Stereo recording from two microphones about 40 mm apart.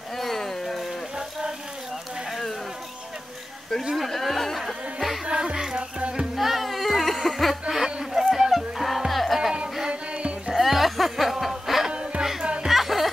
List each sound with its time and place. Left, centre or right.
0.2 s a sound: centre
3.9 s music: centre
5.2 s music: centre
5.9 s music: right
6.3 s music: centre
7.7 s a sound: centre
8.5 s music: centre
9.8 s music: right
10.5 s music: centre
11.9 s music: right
12.2 s music: centre
12.6 s a sound: centre